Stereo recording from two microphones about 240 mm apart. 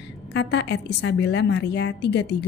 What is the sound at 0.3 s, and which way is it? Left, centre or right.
A woman's voice, left.